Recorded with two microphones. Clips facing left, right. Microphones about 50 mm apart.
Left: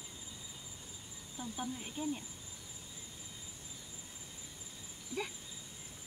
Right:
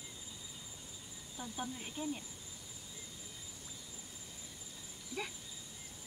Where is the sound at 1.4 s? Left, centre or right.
Centre.